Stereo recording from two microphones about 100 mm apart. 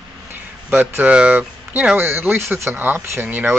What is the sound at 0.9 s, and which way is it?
Speech, 15° right (ahead or behind).